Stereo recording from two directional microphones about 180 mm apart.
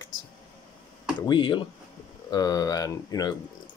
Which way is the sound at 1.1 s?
25° left (ahead or behind).